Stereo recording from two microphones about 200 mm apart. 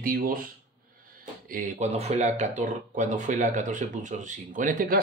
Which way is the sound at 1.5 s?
40° right (ahead or behind).